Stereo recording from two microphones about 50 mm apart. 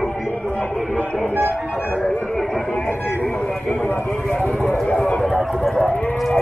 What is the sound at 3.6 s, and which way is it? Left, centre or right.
Speech, left.